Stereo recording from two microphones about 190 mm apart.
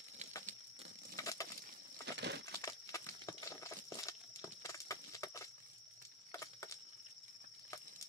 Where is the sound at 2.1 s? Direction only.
65° right (ahead or behind).